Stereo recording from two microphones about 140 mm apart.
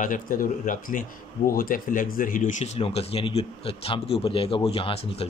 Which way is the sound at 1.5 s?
85° left.